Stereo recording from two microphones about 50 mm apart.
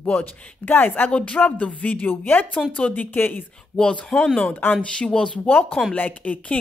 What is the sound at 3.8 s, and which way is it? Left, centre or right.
Speech, centre.